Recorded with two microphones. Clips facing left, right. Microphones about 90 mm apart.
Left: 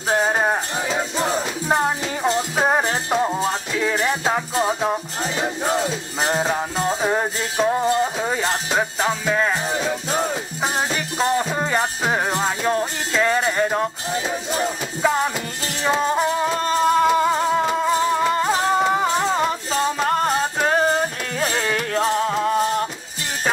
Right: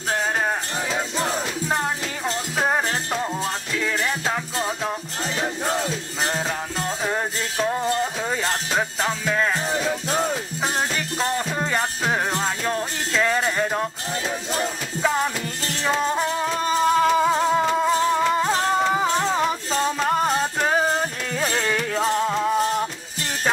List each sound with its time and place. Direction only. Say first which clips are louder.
0.1 s music: left 4 dB; 20° left (ahead or behind)
0.9 s music: left 3 dB; 5° left (ahead or behind)